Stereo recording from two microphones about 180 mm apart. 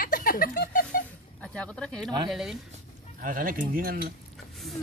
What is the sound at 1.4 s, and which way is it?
Speech, 5° left (ahead or behind).